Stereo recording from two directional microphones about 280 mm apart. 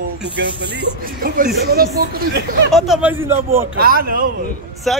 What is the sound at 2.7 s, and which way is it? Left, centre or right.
Speech, centre.